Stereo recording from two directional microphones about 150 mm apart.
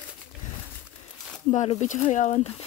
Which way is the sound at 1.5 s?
45° left (ahead or behind).